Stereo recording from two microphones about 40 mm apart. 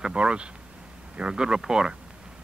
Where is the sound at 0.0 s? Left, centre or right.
Right.